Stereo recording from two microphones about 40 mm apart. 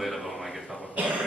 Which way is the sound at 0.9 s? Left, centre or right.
Right.